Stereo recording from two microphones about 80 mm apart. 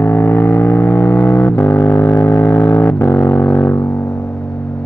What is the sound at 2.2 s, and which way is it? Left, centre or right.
Vehicle, left.